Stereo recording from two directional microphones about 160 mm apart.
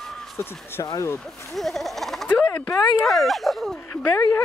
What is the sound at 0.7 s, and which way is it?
Speech, 20° left (ahead or behind).